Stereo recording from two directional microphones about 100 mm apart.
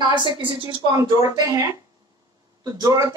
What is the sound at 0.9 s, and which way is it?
Speech, 40° right (ahead or behind).